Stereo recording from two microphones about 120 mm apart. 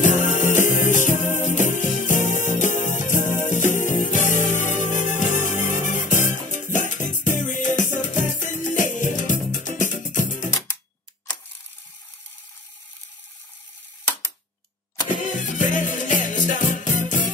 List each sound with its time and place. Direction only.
0.0 s music: 90° left
15.3 s music: 90° left